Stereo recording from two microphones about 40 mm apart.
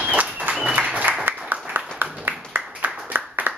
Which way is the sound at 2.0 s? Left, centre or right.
Right.